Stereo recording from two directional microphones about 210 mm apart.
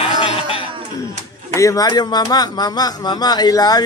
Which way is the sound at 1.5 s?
15° left (ahead or behind).